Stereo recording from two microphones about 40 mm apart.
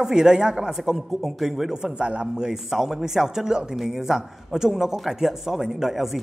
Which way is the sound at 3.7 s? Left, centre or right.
Centre.